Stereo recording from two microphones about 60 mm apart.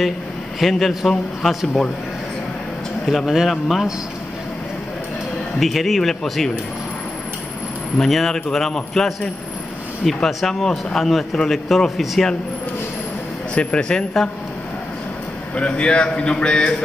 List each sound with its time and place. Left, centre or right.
0.6 s speech: centre
3.1 s speech: centre
5.6 s speech: centre
8.0 s speech: centre
13.6 s a man's voice: centre
15.5 s a man's voice: centre